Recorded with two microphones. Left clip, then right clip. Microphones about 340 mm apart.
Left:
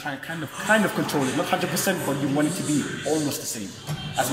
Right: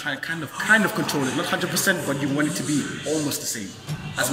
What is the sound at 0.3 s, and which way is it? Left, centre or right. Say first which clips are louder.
A man's voice: right 2 dB; centre.